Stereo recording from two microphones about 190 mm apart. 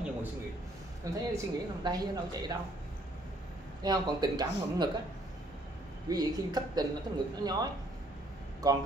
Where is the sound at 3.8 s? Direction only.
20° right (ahead or behind).